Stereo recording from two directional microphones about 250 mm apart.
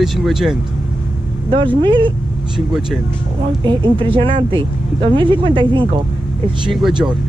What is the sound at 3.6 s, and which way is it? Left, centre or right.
Speech, centre.